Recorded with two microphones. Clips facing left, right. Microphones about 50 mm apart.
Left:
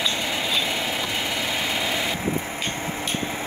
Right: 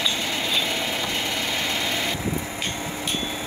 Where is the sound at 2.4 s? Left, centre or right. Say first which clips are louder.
Left 1 dB; left.